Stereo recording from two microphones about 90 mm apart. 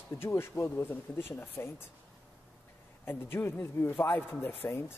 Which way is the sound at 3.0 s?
25° left (ahead or behind).